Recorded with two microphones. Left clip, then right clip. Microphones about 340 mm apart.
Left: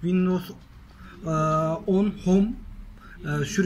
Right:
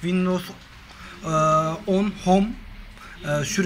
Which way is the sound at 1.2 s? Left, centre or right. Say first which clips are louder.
Right 5 dB; centre.